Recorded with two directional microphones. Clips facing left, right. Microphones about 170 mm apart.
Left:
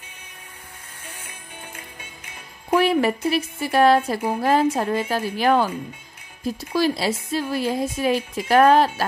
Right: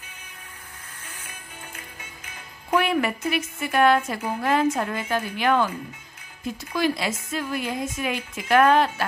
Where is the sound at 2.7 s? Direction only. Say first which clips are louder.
Left 4 dB; 30° left (ahead or behind).